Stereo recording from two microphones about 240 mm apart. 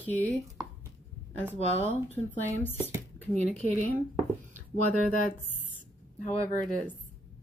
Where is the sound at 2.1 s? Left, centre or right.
Centre.